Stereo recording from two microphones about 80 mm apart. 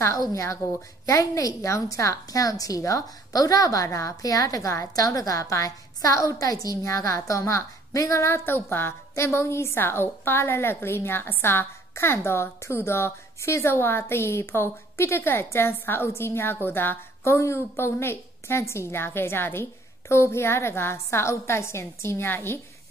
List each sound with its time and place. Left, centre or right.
0.2 s a woman's voice: left